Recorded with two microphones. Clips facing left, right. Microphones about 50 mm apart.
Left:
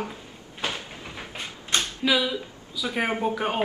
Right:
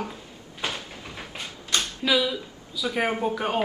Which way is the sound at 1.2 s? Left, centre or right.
Left.